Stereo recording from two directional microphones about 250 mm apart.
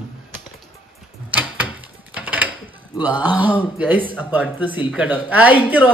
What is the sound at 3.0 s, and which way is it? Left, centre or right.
Speech, centre.